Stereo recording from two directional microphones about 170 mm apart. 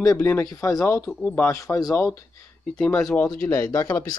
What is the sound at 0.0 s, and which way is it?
Speech, 20° left (ahead or behind).